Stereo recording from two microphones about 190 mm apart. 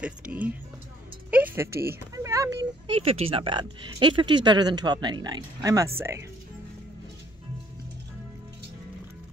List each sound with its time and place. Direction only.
0.0 s speech: 5° right (ahead or behind)
1.3 s music: 10° right (ahead or behind)
2.1 s a sound: 15° right (ahead or behind)
3.0 s speech: 30° right (ahead or behind); by 6.2 s 15° right (ahead or behind)